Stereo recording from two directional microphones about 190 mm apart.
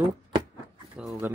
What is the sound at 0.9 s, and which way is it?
Speech, 5° right (ahead or behind).